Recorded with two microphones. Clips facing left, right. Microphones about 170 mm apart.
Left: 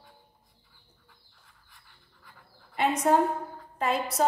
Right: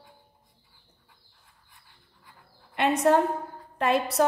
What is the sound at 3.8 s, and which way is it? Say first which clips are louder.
Speech: right 4 dB; 65° right (ahead or behind).